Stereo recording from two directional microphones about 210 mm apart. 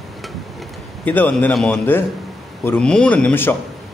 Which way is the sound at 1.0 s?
10° left (ahead or behind).